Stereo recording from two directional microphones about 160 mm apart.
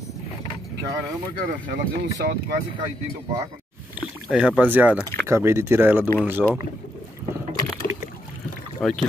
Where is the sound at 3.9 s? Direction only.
5° right (ahead or behind).